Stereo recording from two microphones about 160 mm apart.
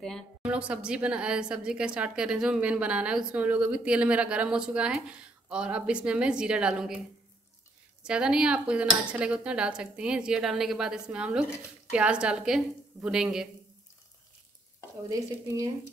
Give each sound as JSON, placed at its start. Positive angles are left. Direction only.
{"t": 0.4, "sound": "a woman's voice", "side_deg": -5}
{"t": 8.0, "sound": "speech", "side_deg": -5}
{"t": 15.0, "sound": "speech", "side_deg": -20}